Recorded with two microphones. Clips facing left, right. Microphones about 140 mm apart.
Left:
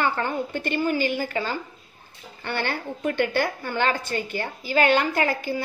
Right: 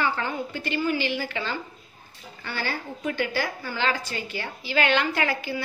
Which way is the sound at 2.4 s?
55° left (ahead or behind).